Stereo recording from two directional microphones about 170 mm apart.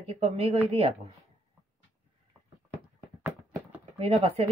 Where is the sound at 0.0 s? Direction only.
35° right (ahead or behind).